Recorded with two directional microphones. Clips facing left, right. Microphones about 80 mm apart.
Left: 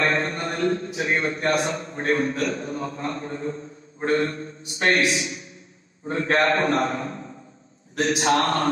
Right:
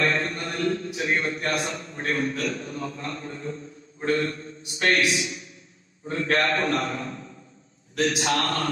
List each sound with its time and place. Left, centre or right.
0.0 s a man's voice: left